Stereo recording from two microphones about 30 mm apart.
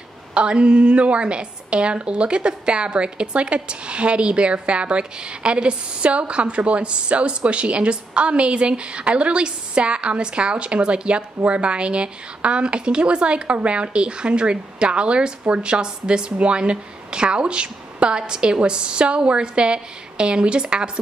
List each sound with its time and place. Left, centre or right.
0.3 s a woman's voice: right